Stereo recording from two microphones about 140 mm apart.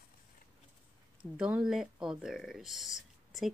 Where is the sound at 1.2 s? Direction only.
10° right (ahead or behind).